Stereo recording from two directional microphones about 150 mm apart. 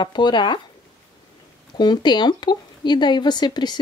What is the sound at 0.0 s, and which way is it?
Speech, 30° left (ahead or behind).